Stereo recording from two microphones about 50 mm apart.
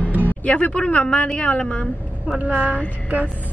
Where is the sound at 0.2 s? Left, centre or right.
Left.